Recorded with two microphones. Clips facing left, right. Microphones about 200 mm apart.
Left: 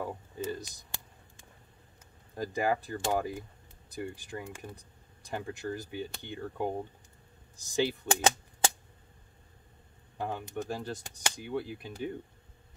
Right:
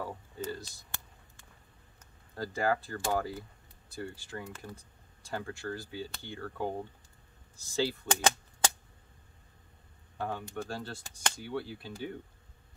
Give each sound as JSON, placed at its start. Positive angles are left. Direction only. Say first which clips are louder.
{"t": 0.0, "sound": "a sound", "louder": "left 2 dB", "side_deg": 15}
{"t": 2.3, "sound": "speech", "louder": "left 1 dB", "side_deg": 15}
{"t": 10.1, "sound": "speech", "louder": "left 1 dB", "side_deg": 20}